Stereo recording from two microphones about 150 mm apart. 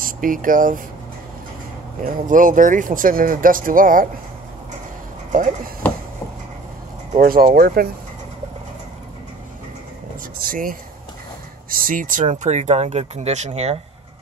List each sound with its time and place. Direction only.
0.0 s speech: 65° right (ahead or behind)
2.2 s speech: 60° right (ahead or behind)
5.8 s a sound: 10° left (ahead or behind)
7.2 s speech: 75° right (ahead or behind); by 7.9 s 90° right
10.4 s speech: 70° right (ahead or behind); by 13.7 s 45° right (ahead or behind)